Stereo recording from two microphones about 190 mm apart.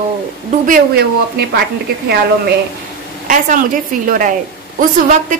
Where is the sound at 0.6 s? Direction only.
50° right (ahead or behind).